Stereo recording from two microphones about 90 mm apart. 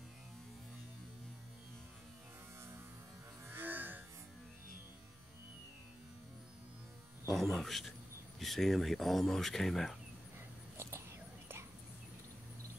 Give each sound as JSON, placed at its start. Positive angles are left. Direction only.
{"t": 3.4, "sound": "music", "side_deg": -20}
{"t": 7.2, "sound": "speech", "side_deg": 0}
{"t": 10.8, "sound": "whispering", "side_deg": -30}